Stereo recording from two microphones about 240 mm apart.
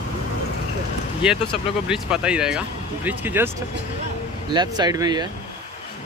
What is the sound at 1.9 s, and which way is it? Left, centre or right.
Speech, centre.